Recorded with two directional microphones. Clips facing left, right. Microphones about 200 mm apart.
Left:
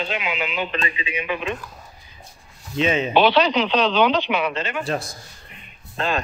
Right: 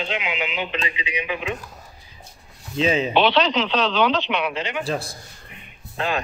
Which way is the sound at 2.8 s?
35° right (ahead or behind).